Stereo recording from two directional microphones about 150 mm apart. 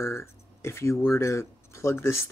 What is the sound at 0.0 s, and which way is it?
Speech, 15° left (ahead or behind).